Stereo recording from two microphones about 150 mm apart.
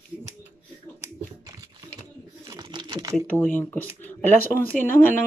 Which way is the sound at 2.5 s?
30° right (ahead or behind).